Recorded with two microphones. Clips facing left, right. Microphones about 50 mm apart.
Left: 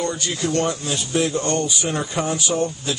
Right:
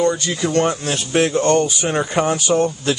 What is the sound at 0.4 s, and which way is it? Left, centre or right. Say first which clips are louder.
Speech: right 2 dB; right.